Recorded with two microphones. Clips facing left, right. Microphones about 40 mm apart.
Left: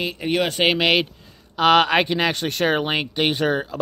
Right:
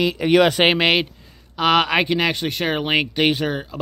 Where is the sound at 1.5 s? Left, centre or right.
Centre.